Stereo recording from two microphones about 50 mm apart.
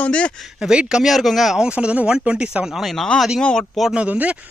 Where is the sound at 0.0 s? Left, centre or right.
Left.